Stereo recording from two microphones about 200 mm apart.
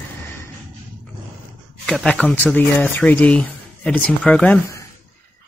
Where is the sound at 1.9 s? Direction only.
5° left (ahead or behind).